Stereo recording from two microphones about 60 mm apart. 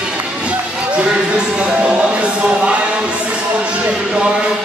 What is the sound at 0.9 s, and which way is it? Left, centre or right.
Speech, centre.